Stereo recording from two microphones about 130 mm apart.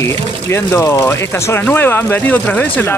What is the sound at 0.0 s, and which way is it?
Speech, 20° left (ahead or behind).